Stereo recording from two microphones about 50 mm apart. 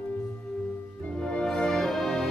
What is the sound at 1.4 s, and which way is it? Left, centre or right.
Music, centre.